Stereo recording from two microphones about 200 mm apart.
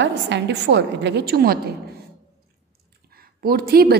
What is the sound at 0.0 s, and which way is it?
A woman's voice, 60° right (ahead or behind).